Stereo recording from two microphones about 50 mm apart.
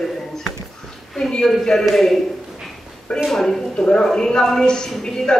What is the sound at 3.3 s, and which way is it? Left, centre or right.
Speech, centre.